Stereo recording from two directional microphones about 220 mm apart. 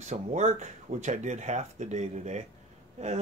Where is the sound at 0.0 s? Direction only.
30° right (ahead or behind).